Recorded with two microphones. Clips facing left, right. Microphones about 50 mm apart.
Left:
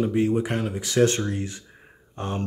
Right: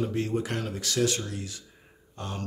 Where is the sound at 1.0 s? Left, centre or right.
Left.